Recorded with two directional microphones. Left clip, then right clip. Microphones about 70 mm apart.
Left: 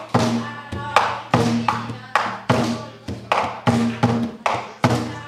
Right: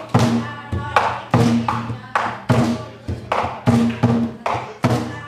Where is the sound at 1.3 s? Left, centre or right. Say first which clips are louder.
Even; centre.